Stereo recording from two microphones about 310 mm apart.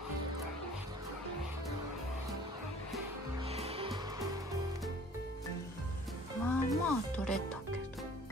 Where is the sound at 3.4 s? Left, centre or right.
Centre.